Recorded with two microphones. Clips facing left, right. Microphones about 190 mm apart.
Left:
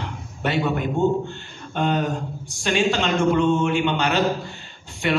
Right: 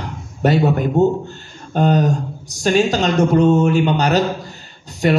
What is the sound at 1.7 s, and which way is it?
Speech, 40° right (ahead or behind).